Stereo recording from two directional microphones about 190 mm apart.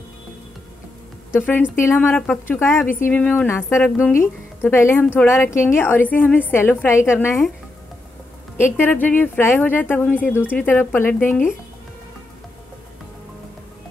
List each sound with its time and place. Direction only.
1.3 s speech: 10° left (ahead or behind)
8.7 s speech: 10° left (ahead or behind)